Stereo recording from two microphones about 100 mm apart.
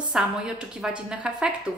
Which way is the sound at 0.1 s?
10° right (ahead or behind).